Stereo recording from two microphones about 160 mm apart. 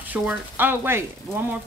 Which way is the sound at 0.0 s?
10° right (ahead or behind).